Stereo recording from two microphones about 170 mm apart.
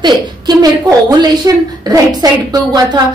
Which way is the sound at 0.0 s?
25° right (ahead or behind).